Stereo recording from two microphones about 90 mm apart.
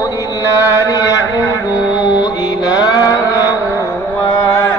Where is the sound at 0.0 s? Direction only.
40° left (ahead or behind).